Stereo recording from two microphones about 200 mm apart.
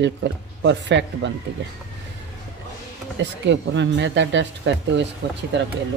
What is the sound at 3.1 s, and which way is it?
A man's voice, 65° right (ahead or behind).